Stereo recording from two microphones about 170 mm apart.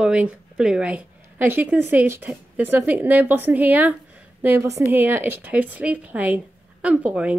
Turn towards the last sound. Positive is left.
turn(degrees=-5)  # may be behind; listen again after turning